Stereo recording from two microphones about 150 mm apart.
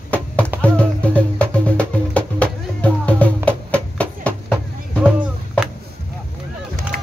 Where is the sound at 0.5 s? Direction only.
10° right (ahead or behind).